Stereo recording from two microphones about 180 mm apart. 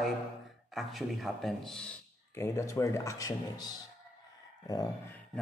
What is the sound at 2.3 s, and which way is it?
Speech, 15° left (ahead or behind).